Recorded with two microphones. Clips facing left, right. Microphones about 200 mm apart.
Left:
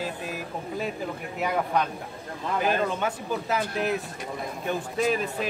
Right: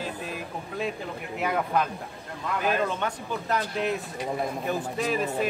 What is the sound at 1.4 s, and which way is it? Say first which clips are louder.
Speech: even; centre (ahead or behind).